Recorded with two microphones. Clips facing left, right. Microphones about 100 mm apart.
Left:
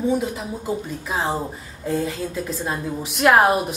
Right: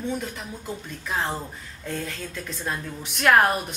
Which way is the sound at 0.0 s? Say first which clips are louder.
Left 8 dB; 5° left (ahead or behind).